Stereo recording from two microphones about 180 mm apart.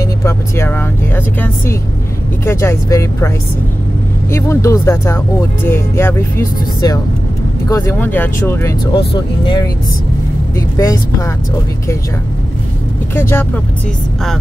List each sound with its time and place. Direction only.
0.2 s speech: 10° left (ahead or behind)
4.3 s speech: 15° left (ahead or behind)
10.8 s speech: 20° left (ahead or behind)
13.1 s speech: 15° left (ahead or behind)